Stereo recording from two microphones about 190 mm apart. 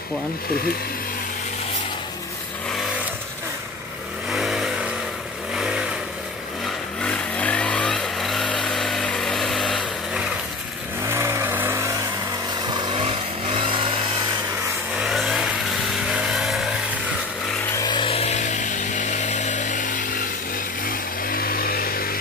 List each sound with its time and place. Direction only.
4.3 s vehicle: centre (ahead or behind)
7.0 s vehicle: 5° left (ahead or behind)
11.0 s vehicle: 15° right (ahead or behind)
12.6 s vehicle: 20° right (ahead or behind)
15.0 s vehicle: centre (ahead or behind)
17.7 s chainsaw: 25° left (ahead or behind); by 20.0 s 40° left (ahead or behind)
20.8 s vehicle: 50° left (ahead or behind)